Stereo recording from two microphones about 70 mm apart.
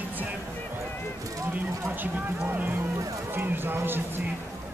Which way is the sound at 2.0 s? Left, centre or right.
Right.